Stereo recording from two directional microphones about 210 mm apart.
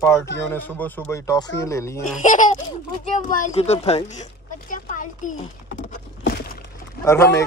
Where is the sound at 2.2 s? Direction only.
35° left (ahead or behind).